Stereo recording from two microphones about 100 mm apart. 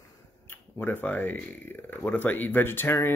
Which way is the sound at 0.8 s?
20° left (ahead or behind).